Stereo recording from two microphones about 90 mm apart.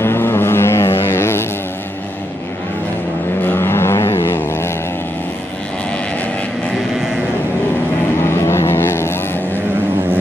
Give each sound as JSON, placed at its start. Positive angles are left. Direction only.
{"t": 0.0, "sound": "vehicle", "side_deg": 30}
{"t": 3.4, "sound": "vehicle", "side_deg": 25}
{"t": 8.3, "sound": "vehicle", "side_deg": 30}